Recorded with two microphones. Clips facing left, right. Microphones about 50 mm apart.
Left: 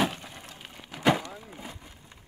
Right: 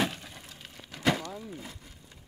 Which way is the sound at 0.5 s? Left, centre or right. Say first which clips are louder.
Left 3 dB; centre.